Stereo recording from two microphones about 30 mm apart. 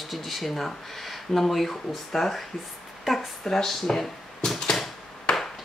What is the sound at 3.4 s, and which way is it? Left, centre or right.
Speech, centre.